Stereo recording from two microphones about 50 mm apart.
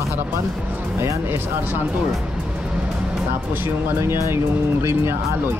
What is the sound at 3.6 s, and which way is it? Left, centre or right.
Speech, right.